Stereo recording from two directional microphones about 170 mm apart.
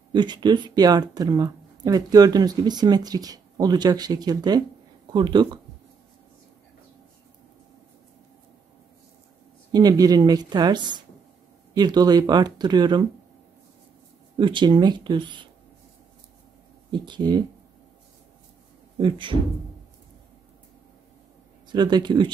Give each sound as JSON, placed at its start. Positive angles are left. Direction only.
{"t": 0.1, "sound": "speech", "side_deg": -25}
{"t": 9.7, "sound": "speech", "side_deg": -20}
{"t": 14.4, "sound": "speech", "side_deg": -30}
{"t": 16.9, "sound": "speech", "side_deg": -25}
{"t": 18.9, "sound": "speech", "side_deg": -30}
{"t": 21.6, "sound": "speech", "side_deg": -25}